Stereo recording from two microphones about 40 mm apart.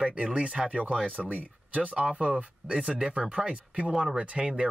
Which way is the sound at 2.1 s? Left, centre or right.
Right.